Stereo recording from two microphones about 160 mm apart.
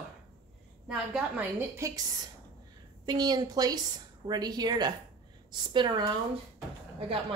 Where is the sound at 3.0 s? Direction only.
25° right (ahead or behind).